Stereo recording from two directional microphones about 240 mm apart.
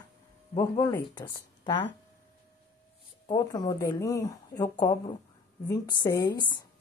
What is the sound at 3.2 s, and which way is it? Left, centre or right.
Speech, centre.